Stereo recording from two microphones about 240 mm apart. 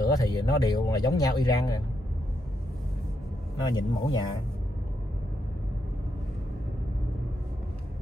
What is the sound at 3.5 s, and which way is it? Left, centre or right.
Speech, centre.